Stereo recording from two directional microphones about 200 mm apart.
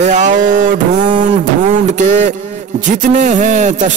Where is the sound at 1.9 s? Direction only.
35° right (ahead or behind).